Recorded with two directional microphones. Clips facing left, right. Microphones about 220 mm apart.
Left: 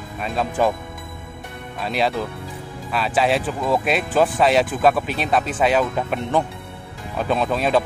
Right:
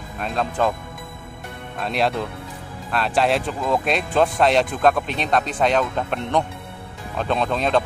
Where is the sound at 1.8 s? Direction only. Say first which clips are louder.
Even; centre (ahead or behind).